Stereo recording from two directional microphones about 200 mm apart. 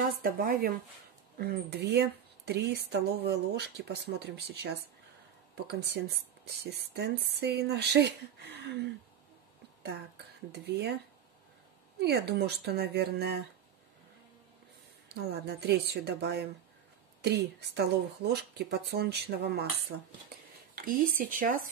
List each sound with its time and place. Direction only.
0.2 s a woman's voice: 50° right (ahead or behind)
6.4 s a woman's voice: 55° right (ahead or behind)
10.5 s a woman's voice: 55° right (ahead or behind)
12.0 s a woman's voice: 55° right (ahead or behind)
15.0 s a woman's voice: 55° right (ahead or behind)
19.9 s speech: 90° right
20.7 s speech: 45° right (ahead or behind)